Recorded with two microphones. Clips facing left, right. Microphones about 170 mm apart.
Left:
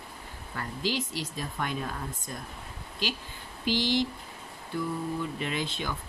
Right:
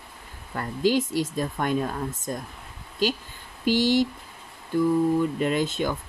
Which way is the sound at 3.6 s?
45° right (ahead or behind).